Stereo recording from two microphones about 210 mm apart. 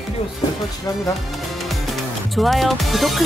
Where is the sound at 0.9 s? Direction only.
15° left (ahead or behind).